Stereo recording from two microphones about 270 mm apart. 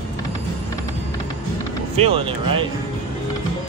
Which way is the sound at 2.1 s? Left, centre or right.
Centre.